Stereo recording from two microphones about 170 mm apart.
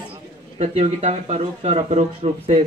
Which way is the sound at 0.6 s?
40° right (ahead or behind).